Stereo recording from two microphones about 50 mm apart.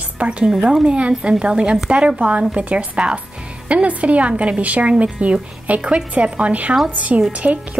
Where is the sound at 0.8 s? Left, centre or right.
Right.